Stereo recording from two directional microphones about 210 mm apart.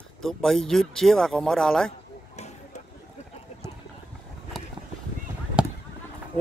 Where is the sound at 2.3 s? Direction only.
30° left (ahead or behind).